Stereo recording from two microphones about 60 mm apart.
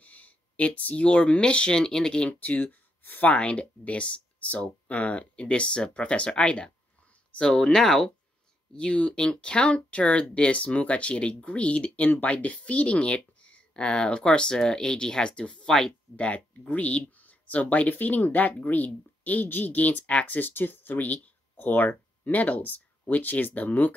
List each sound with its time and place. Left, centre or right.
0.0 s speech: left
2.4 s speech: left